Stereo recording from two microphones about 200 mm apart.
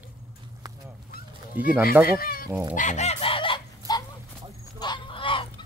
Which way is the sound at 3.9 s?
20° left (ahead or behind).